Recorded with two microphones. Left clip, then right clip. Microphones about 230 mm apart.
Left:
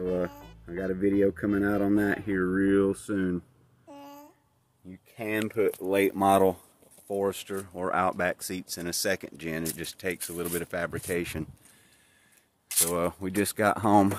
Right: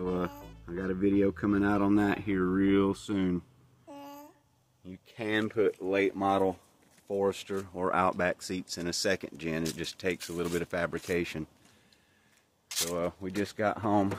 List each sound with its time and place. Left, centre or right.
0.0 s speech: centre
2.3 s babbling: centre
5.1 s speech: centre
5.5 s speech: centre
5.9 s speech: left
7.1 s speech: centre
11.1 s speech: centre
12.9 s speech: left